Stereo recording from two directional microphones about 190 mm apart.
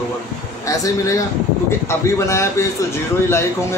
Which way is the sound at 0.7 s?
15° left (ahead or behind).